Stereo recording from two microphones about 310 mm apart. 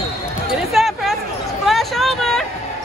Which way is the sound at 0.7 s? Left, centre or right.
Centre.